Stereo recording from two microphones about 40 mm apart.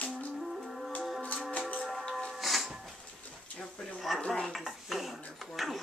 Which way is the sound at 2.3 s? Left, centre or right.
Centre.